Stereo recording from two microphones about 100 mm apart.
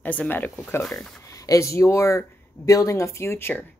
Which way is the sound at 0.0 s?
15° left (ahead or behind).